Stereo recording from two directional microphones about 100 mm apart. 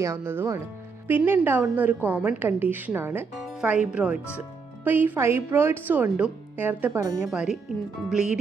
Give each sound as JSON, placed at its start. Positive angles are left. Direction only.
{"t": 0.0, "sound": "speech", "side_deg": -25}
{"t": 7.0, "sound": "speech", "side_deg": -30}
{"t": 7.2, "sound": "speech", "side_deg": -5}